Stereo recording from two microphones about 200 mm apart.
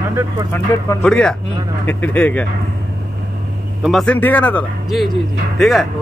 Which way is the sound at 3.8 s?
Centre (ahead or behind).